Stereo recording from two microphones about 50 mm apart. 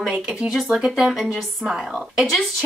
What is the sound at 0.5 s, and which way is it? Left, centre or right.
A woman's voice, centre.